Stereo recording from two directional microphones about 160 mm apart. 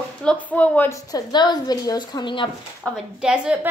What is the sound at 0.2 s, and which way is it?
A woman's voice, 10° left (ahead or behind).